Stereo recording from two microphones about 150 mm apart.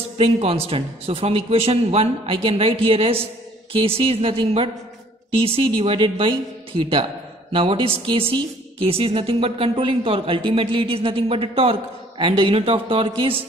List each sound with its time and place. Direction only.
0.2 s speech: 40° right (ahead or behind)